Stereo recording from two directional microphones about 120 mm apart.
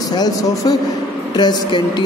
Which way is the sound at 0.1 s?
35° left (ahead or behind).